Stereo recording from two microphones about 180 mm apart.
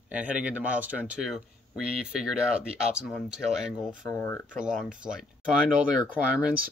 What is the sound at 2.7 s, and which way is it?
Speech, 5° right (ahead or behind).